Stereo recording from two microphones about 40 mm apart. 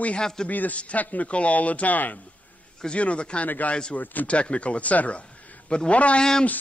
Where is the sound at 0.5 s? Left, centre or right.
Left.